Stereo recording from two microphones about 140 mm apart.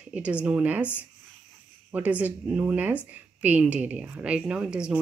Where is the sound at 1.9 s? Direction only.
10° right (ahead or behind).